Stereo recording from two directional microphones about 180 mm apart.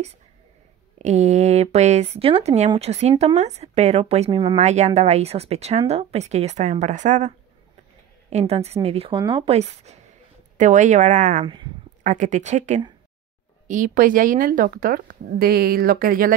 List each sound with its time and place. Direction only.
0.9 s speech: 40° right (ahead or behind)
4.6 s a woman's voice: 40° right (ahead or behind)
11.4 s speech: 25° right (ahead or behind)
12.0 s a woman's voice: 40° right (ahead or behind)